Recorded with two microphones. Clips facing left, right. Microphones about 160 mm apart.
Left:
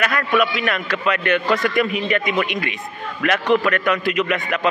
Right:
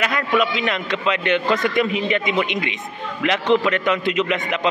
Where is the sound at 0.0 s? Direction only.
20° right (ahead or behind).